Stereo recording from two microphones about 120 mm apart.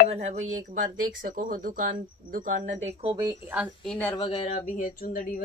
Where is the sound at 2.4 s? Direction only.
90° right.